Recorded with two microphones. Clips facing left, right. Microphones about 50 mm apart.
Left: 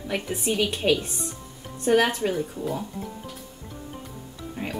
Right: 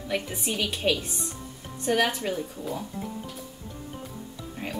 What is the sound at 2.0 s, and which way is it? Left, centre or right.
Speech, centre.